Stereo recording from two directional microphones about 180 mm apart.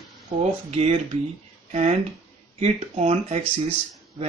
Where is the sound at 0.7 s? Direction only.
35° right (ahead or behind).